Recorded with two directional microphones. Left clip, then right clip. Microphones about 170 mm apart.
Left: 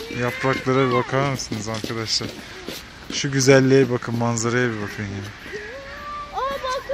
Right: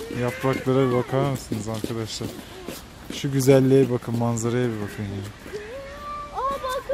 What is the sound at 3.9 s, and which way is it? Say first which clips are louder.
Speech: left 2 dB; 10° left (ahead or behind).